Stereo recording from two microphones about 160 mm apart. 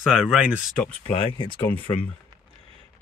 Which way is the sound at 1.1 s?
35° left (ahead or behind).